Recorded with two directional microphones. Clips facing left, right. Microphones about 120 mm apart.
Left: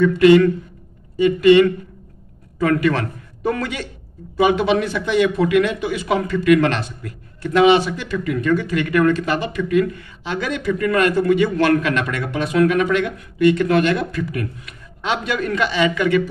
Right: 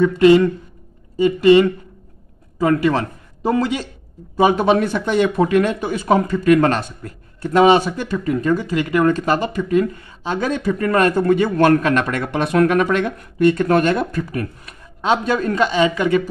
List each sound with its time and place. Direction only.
0.0 s a woman's voice: 30° right (ahead or behind); by 8.2 s 45° right (ahead or behind)
8.2 s speech: 35° right (ahead or behind)